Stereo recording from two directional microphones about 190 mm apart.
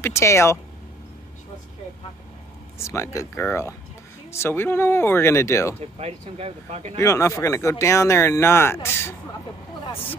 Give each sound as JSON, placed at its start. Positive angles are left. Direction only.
{"t": 0.0, "sound": "speech", "side_deg": 15}
{"t": 2.8, "sound": "speech", "side_deg": 15}
{"t": 5.8, "sound": "speech", "side_deg": -35}
{"t": 7.0, "sound": "speech", "side_deg": 15}